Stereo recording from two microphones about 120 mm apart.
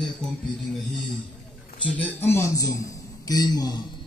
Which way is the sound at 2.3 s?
25° left (ahead or behind).